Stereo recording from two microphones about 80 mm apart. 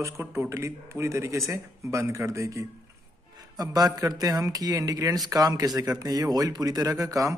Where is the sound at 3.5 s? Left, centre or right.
Right.